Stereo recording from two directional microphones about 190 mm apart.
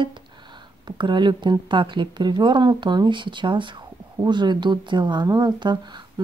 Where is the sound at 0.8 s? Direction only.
25° right (ahead or behind).